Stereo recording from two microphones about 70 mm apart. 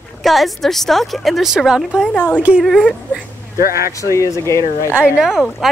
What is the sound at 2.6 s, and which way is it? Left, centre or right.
Speech, centre.